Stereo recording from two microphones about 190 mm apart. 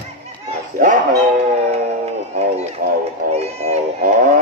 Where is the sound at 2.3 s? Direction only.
35° right (ahead or behind).